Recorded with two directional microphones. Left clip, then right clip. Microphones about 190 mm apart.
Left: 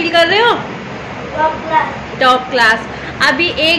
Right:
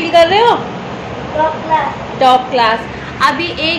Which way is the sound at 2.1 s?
20° left (ahead or behind).